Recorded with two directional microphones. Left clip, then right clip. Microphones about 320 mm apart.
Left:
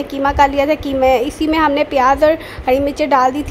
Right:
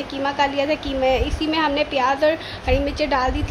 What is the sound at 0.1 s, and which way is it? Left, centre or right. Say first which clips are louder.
A woman's voice: left 8 dB; left.